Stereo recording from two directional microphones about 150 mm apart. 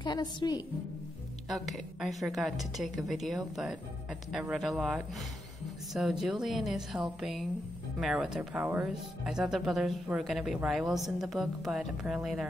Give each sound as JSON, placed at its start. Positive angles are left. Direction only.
{"t": 0.0, "sound": "a woman's voice", "side_deg": 30}
{"t": 1.5, "sound": "a woman's voice", "side_deg": 0}